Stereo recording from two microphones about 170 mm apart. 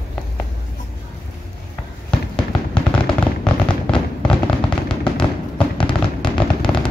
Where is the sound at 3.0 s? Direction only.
5° left (ahead or behind).